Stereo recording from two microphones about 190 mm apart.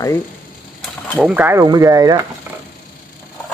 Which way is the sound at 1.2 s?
10° right (ahead or behind).